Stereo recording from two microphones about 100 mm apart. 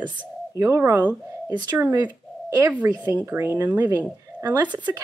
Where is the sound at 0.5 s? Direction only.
30° right (ahead or behind).